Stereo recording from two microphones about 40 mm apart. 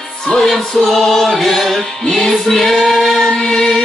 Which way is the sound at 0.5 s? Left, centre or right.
Centre.